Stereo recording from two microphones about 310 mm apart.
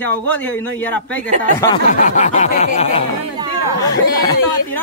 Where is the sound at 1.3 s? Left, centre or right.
Right.